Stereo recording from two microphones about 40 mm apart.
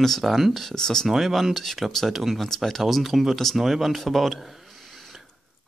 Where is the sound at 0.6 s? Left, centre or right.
Centre.